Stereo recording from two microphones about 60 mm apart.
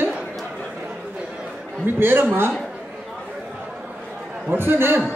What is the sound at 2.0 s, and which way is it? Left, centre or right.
Speech, right.